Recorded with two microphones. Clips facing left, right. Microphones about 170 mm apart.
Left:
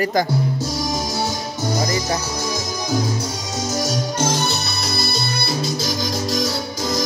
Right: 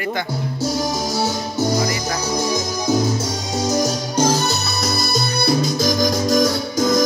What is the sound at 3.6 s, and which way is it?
Music, 35° right (ahead or behind).